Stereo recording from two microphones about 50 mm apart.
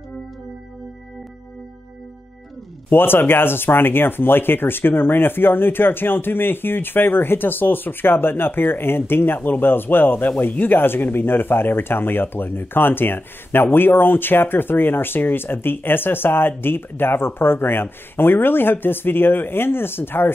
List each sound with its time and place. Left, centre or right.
2.9 s speech: left